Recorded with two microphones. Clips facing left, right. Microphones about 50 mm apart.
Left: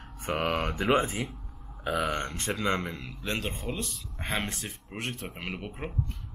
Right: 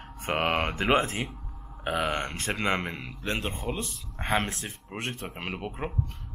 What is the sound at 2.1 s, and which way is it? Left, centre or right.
Speech, centre.